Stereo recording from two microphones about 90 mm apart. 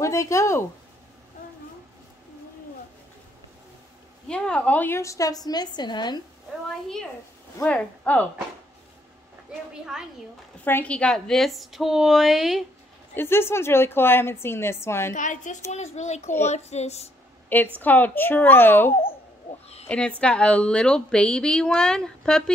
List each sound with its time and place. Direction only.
0.0 s speech: 35° left (ahead or behind)
4.3 s a woman's voice: 15° left (ahead or behind)
5.0 s a woman's voice: 40° left (ahead or behind); by 6.2 s 55° left (ahead or behind)
7.6 s a woman's voice: 15° left (ahead or behind)
10.6 s a woman's voice: 20° left (ahead or behind); by 12.6 s centre (ahead or behind)
13.1 s a woman's voice: 25° left (ahead or behind)
17.5 s a woman's voice: 20° left (ahead or behind)
19.9 s a woman's voice: 15° left (ahead or behind)